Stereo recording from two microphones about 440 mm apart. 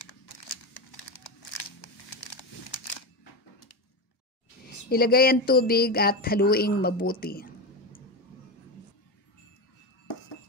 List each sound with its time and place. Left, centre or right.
0.0 s crumpling: left
4.8 s speech: left